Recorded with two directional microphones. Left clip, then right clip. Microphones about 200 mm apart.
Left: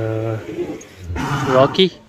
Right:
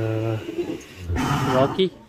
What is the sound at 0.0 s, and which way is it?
Bird, centre (ahead or behind).